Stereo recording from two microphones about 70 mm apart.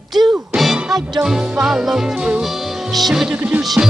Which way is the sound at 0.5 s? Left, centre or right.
Centre.